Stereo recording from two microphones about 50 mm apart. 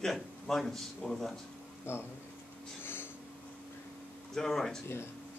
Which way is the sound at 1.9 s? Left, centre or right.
Left.